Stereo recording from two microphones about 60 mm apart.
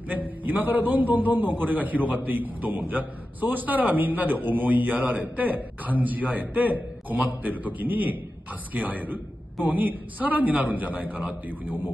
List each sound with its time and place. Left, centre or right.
0.1 s a man's voice: right